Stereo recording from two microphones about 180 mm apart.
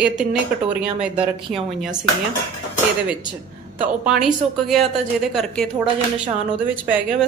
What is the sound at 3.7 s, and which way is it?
A woman's voice, 5° right (ahead or behind).